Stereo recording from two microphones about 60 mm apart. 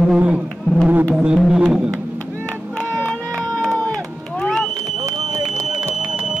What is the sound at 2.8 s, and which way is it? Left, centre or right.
Run, left.